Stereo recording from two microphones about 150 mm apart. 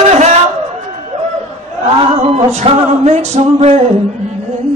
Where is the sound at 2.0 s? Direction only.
45° right (ahead or behind).